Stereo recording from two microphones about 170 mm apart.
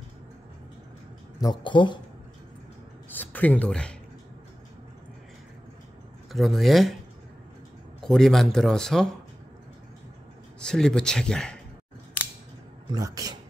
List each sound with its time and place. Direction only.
1.4 s speech: 25° left (ahead or behind)
3.1 s a sound: 10° left (ahead or behind)
6.3 s speech: centre (ahead or behind)
8.0 s speech: centre (ahead or behind)
10.6 s speech: 5° left (ahead or behind)
12.9 s speech: 20° right (ahead or behind)